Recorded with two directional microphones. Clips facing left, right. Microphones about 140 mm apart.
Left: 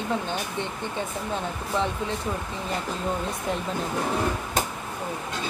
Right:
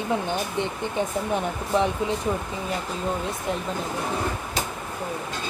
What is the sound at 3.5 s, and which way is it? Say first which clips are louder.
Speech: right 1 dB; centre (ahead or behind).